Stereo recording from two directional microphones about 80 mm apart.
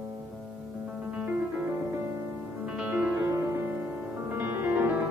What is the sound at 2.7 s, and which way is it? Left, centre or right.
Music, centre.